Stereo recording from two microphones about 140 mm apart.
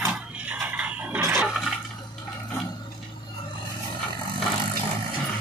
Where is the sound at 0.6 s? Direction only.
10° right (ahead or behind).